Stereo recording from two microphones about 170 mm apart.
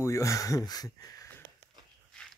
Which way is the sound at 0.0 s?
15° left (ahead or behind).